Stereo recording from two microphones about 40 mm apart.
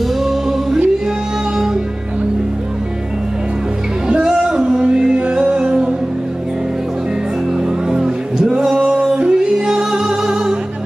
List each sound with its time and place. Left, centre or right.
0.2 s music: centre
4.2 s music: centre
7.9 s music: centre